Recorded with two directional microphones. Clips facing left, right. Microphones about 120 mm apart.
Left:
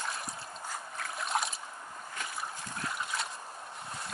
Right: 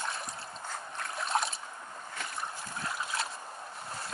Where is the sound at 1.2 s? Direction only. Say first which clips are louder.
Right 2 dB; centre (ahead or behind).